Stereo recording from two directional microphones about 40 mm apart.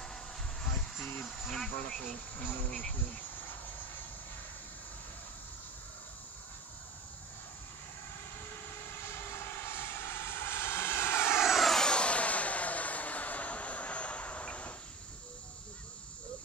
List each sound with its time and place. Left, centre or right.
0.0 s a sound: centre
1.2 s speech: centre
9.7 s vehicle: left
11.2 s vehicle: centre
11.8 s vehicle: left